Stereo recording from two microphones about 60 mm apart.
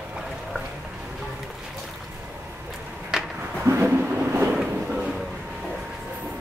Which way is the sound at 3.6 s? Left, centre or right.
Right.